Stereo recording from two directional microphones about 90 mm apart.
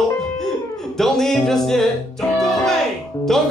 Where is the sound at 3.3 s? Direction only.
5° left (ahead or behind).